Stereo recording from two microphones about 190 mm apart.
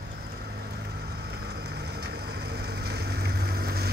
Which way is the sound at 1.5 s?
60° right (ahead or behind).